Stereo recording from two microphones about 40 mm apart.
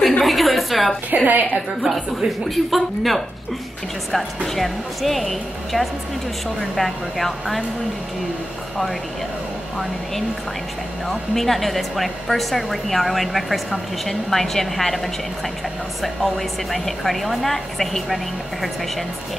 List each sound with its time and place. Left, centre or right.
0.2 s a sound: centre
1.2 s a woman's voice: right
1.8 s a woman's voice: centre
11.1 s a woman's voice: centre
16.0 s a woman's voice: centre